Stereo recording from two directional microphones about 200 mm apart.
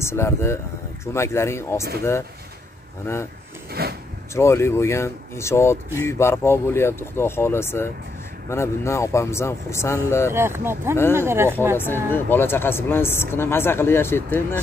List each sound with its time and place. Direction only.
0.0 s speech: 15° left (ahead or behind)
3.8 s speech: 50° right (ahead or behind)
4.3 s speech: 15° left (ahead or behind)
10.3 s speech: 10° right (ahead or behind)
11.7 s speech: 10° left (ahead or behind)